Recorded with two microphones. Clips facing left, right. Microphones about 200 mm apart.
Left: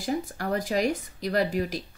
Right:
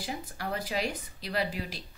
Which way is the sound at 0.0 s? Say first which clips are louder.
Left 8 dB; 45° left (ahead or behind).